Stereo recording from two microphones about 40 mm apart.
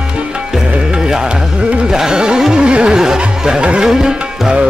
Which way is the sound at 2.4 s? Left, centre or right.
Right.